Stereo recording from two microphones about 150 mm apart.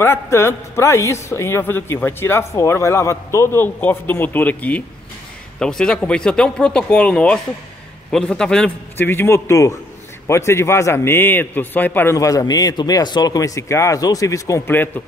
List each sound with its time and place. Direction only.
0.0 s a man's voice: 15° left (ahead or behind)